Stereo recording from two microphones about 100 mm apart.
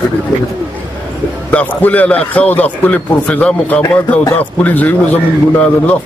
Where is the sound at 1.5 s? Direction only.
15° left (ahead or behind).